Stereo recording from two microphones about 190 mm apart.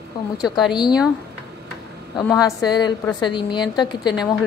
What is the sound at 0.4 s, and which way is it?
Speech, centre (ahead or behind).